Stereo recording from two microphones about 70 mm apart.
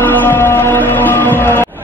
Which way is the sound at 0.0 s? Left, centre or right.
Left.